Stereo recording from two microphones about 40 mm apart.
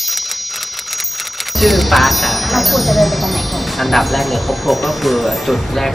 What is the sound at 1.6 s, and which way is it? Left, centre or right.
Wind chime, centre.